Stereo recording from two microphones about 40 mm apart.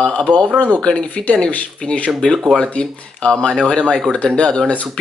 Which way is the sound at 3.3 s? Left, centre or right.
Centre.